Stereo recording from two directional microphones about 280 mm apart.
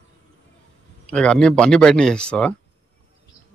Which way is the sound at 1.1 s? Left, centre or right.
Centre.